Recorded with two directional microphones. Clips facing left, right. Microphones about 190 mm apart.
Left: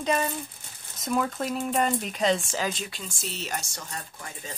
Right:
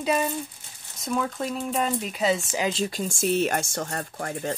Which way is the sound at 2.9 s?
45° right (ahead or behind).